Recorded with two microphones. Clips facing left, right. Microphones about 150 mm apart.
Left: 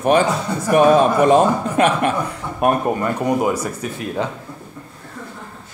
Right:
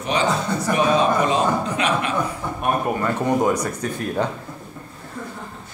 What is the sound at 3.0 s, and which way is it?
Speech, 10° left (ahead or behind).